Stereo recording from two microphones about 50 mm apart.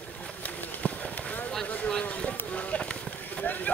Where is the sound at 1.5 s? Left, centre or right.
Centre.